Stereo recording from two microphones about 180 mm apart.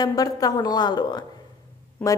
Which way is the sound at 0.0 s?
20° left (ahead or behind).